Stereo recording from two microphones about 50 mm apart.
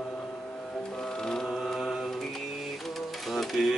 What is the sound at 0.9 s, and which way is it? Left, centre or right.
Music, centre.